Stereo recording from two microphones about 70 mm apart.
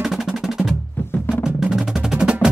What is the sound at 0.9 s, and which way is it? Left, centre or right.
Music, left.